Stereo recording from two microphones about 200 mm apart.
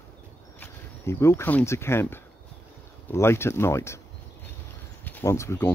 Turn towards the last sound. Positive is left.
turn(degrees=15)  # may be behind; listen again after turning